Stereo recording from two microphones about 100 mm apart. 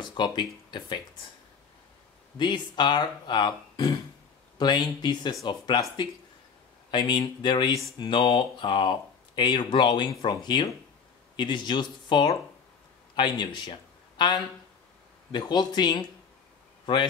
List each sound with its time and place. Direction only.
0.0 s speech: 50° left (ahead or behind)
2.3 s speech: 50° left (ahead or behind)
6.9 s speech: 50° left (ahead or behind)